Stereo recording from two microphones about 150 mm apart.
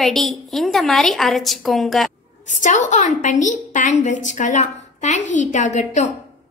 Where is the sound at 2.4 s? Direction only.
55° left (ahead or behind).